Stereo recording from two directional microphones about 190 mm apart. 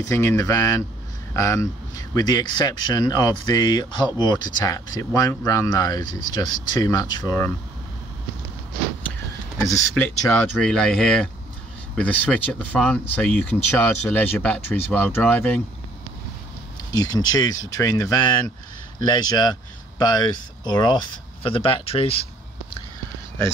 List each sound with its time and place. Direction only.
0.0 s speech: 15° left (ahead or behind)
9.7 s speech: 15° left (ahead or behind)
16.9 s speech: 20° left (ahead or behind)